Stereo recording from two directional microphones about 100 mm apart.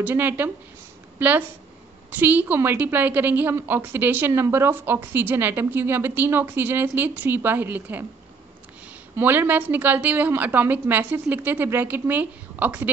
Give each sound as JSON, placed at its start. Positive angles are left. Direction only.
{"t": 0.0, "sound": "speech", "side_deg": -20}
{"t": 9.1, "sound": "a woman's voice", "side_deg": -20}